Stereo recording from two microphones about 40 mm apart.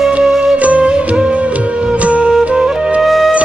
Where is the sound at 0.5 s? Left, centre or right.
Right.